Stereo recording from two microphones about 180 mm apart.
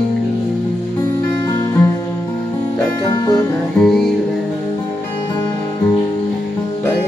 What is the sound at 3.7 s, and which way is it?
Music, centre (ahead or behind).